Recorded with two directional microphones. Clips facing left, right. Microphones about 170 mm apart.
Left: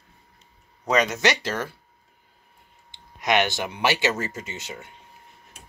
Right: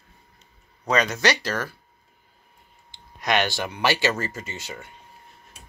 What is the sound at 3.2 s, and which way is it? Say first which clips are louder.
Speech: left 1 dB; 20° left (ahead or behind).